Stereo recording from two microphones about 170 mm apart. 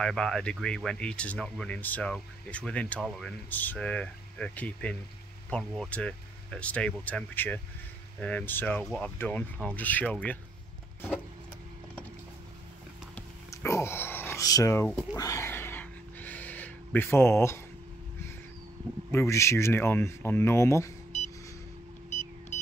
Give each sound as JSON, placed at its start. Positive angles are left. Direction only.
{"t": 0.0, "sound": "speech", "side_deg": 5}
{"t": 13.5, "sound": "speech", "side_deg": 15}
{"t": 15.1, "sound": "a sound", "side_deg": 20}
{"t": 19.1, "sound": "speech", "side_deg": 15}